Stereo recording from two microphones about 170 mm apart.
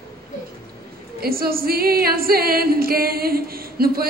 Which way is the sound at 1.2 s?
60° right (ahead or behind).